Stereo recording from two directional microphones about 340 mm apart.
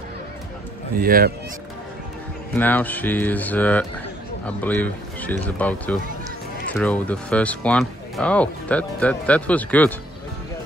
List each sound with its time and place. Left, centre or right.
0.9 s speech: right
2.5 s speech: centre